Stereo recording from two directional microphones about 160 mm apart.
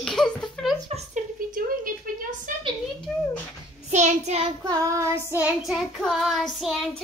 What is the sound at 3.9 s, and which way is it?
Child singing, 45° right (ahead or behind).